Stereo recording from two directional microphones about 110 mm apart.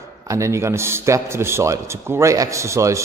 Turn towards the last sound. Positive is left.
turn(degrees=-30)  # may be behind; listen again after turning